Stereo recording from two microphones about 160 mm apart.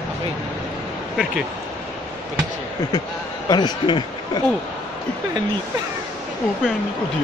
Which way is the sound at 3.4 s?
25° left (ahead or behind).